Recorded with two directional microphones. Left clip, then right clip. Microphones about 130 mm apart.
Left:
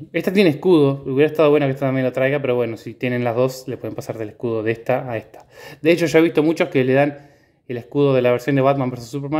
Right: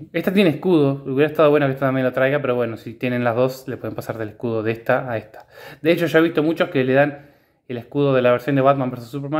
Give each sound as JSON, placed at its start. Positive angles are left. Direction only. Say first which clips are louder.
{"t": 0.1, "sound": "speech", "louder": "left 1 dB", "side_deg": 25}
{"t": 5.8, "sound": "speech", "louder": "left 2 dB", "side_deg": 30}